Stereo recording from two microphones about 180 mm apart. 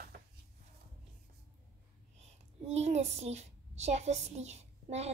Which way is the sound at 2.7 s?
35° right (ahead or behind).